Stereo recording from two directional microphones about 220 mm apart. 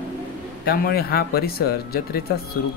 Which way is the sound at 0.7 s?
45° left (ahead or behind).